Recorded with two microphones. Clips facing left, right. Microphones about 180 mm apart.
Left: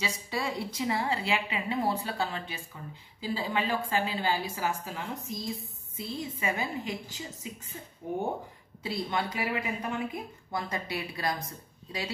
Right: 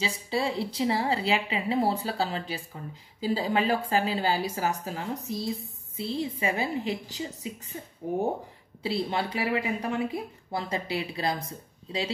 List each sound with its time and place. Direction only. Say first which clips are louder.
0.0 s a woman's voice: right 4 dB; 30° right (ahead or behind)